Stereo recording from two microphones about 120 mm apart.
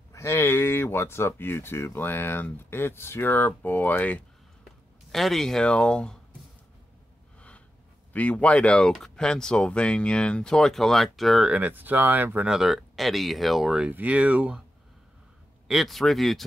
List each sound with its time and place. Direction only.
0.1 s speech: 25° left (ahead or behind)
5.1 s speech: centre (ahead or behind)
7.3 s snort: 10° left (ahead or behind)
8.1 s speech: 10° left (ahead or behind); by 14.6 s 10° right (ahead or behind)
15.7 s speech: centre (ahead or behind)